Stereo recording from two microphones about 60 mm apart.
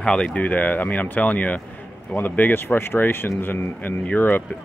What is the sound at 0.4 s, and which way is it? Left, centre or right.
Speech, left.